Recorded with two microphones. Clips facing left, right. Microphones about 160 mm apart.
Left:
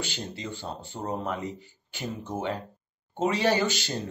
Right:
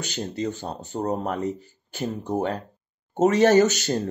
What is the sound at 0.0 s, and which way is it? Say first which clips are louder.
Speech: right 7 dB; 40° right (ahead or behind).